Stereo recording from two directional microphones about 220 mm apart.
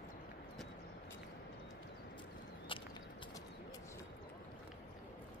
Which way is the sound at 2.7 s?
20° left (ahead or behind).